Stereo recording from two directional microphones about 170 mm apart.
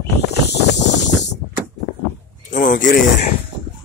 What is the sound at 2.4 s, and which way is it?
Speech, 50° left (ahead or behind).